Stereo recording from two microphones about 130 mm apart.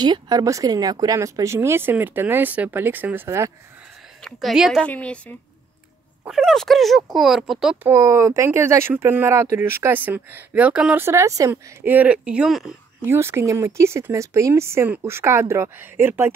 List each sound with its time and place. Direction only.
0.0 s speech: 30° right (ahead or behind)
4.2 s speech: centre (ahead or behind)
4.8 s a woman's voice: 10° left (ahead or behind)
6.2 s speech: centre (ahead or behind)
7.8 s speech: 20° right (ahead or behind)
11.0 s speech: 20° right (ahead or behind); by 12.7 s 5° right (ahead or behind)
13.0 s speech: 20° right (ahead or behind)